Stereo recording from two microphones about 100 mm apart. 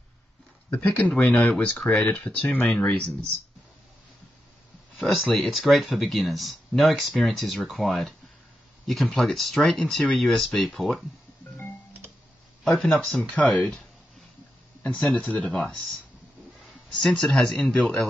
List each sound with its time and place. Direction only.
0.7 s speech: 15° left (ahead or behind)
4.9 s speech: centre (ahead or behind)
12.6 s speech: centre (ahead or behind)
16.9 s speech: 5° left (ahead or behind)